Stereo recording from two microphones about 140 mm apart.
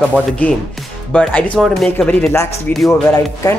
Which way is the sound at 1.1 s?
10° left (ahead or behind).